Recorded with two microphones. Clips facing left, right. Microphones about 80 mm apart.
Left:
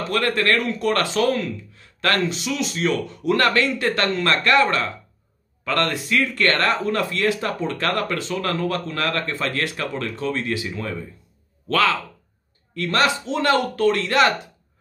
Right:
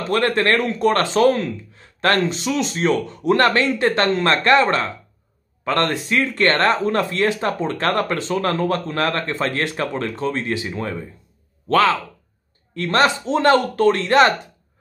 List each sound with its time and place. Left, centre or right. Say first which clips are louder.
0.1 s speech: right 3 dB; right